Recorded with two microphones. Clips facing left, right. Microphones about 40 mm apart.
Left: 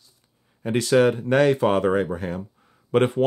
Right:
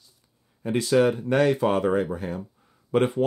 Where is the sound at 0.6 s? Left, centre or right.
Left.